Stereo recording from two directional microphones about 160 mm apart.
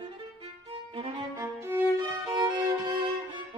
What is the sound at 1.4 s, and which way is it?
Music, 15° right (ahead or behind).